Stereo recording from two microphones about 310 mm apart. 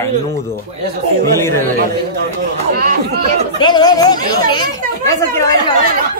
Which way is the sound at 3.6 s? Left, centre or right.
Centre.